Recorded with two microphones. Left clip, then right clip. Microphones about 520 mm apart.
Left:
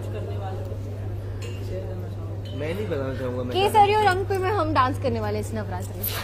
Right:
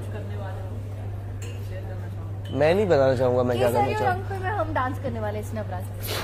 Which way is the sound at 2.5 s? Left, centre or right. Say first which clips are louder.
Right 10 dB; right.